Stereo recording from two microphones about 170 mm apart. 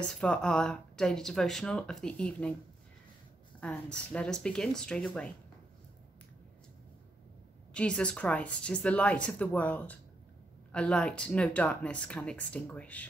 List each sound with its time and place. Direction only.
0.0 s speech: 5° left (ahead or behind)
3.6 s speech: 5° left (ahead or behind)
7.7 s speech: 5° left (ahead or behind)